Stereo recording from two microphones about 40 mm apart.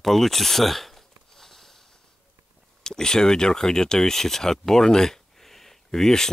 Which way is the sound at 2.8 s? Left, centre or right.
Centre.